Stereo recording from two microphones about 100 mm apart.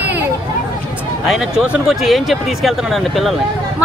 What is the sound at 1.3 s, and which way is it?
Speech, centre (ahead or behind).